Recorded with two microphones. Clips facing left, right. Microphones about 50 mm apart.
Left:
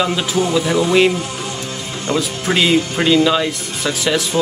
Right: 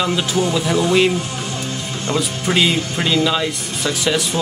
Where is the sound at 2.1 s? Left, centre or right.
Centre.